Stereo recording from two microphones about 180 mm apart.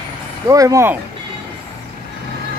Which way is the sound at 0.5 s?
20° right (ahead or behind).